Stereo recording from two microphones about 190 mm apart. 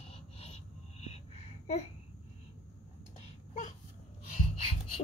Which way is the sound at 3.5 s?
40° left (ahead or behind).